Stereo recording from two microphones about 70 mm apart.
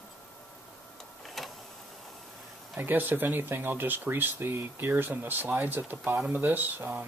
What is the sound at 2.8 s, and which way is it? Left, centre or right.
Speech, right.